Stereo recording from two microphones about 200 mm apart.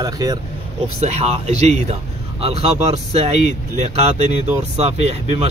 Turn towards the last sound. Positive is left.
turn(degrees=-30)  # may be behind; listen again after turning